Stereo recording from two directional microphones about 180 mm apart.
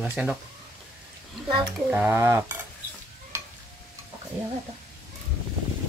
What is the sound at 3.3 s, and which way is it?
Stir, 15° right (ahead or behind).